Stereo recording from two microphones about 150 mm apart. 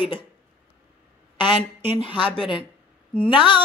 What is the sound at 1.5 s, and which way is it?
Speech, 45° right (ahead or behind).